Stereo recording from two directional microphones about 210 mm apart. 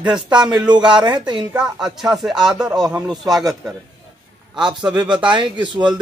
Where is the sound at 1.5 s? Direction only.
5° right (ahead or behind).